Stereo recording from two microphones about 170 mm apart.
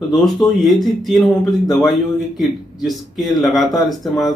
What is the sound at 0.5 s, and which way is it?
Speech, centre (ahead or behind).